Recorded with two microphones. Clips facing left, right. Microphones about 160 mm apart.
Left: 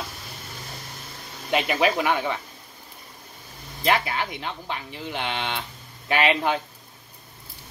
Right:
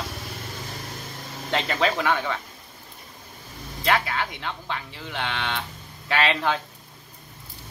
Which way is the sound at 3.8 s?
20° left (ahead or behind).